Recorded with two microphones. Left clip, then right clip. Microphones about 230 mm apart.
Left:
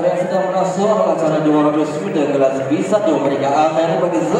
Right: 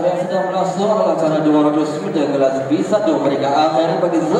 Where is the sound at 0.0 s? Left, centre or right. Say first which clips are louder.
Left 1 dB; left.